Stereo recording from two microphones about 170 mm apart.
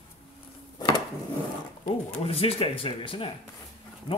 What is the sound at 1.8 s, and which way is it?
Speech, 35° left (ahead or behind).